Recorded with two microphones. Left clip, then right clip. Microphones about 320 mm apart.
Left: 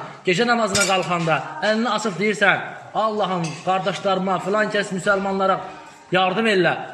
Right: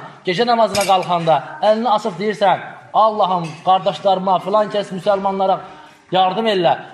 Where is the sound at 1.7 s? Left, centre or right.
Centre.